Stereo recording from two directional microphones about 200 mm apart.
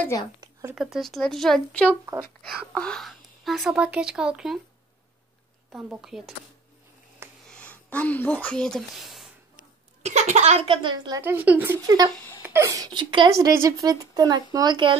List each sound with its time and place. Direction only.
0.0 s speech: 15° left (ahead or behind)
0.4 s a sound: 15° right (ahead or behind)
0.7 s speech: centre (ahead or behind)
1.9 s speech: 10° right (ahead or behind)
2.7 s speech: 5° left (ahead or behind)
5.7 s speech: 5° right (ahead or behind)
7.4 s a woman's voice: 5° left (ahead or behind)
10.0 s a woman's voice: 35° right (ahead or behind)